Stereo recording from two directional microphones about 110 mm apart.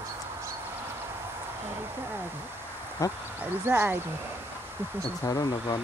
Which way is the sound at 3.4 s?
20° right (ahead or behind).